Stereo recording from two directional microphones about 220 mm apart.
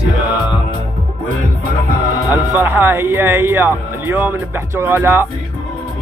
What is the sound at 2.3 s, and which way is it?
Speech, 10° right (ahead or behind).